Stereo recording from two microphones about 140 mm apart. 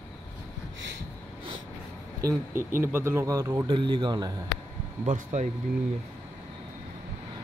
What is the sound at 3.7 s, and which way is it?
Speech, 35° right (ahead or behind).